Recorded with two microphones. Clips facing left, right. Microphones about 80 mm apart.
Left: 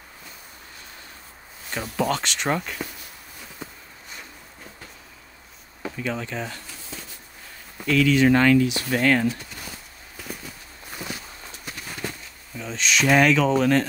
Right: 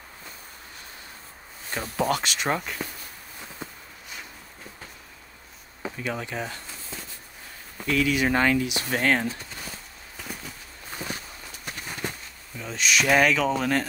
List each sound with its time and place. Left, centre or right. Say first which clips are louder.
2.0 s speech: left 1 dB; centre
2.2 s speech: left 1 dB; centre
5.8 s speech: left 2 dB; centre
7.8 s speech: left 5 dB; centre
8.9 s speech: left 3 dB; right
11.0 s a sound: even; right
12.5 s speech: left 1 dB; centre